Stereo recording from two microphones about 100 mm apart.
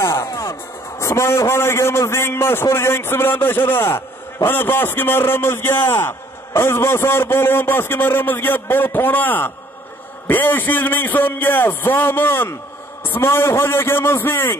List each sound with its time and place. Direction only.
0.0 s a man's voice: 30° left (ahead or behind)